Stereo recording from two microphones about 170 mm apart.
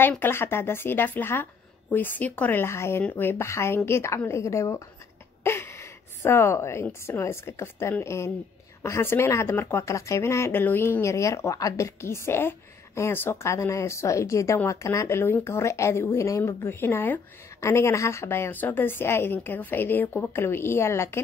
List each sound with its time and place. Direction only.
0.0 s a woman's voice: 10° left (ahead or behind)